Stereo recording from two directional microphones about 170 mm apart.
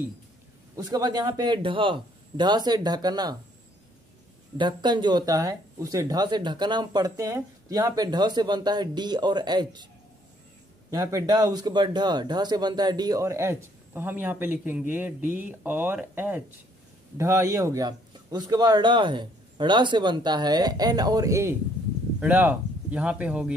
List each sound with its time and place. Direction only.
0.7 s speech: 25° right (ahead or behind)
4.6 s speech: 25° right (ahead or behind)
10.9 s speech: 20° right (ahead or behind)